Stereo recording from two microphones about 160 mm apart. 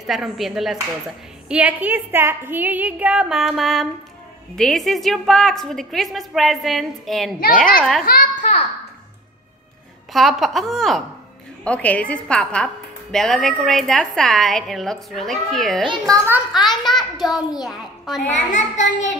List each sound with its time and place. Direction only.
0.0 s a woman's voice: centre (ahead or behind)
8.0 s a sound: 60° left (ahead or behind)
10.1 s a woman's voice: centre (ahead or behind)
18.3 s a child's voice: 50° left (ahead or behind)